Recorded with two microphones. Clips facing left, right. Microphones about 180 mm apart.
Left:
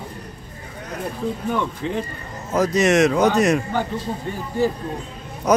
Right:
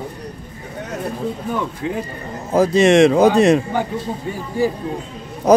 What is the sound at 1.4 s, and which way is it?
Speech, 10° right (ahead or behind).